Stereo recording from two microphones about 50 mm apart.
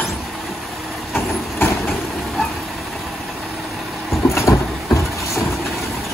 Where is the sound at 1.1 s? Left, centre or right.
Left.